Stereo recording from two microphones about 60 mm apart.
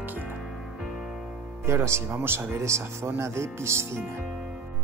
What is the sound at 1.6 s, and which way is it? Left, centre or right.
Speech, right.